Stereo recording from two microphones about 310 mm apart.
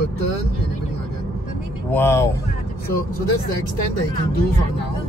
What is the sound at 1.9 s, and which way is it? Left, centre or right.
Speech, centre.